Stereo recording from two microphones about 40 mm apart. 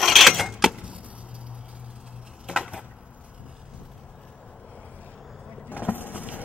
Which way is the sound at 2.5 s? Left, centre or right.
Right.